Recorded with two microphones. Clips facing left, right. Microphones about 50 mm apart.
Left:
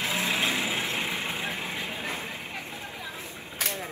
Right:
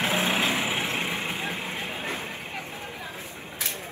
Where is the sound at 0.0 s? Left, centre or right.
Right.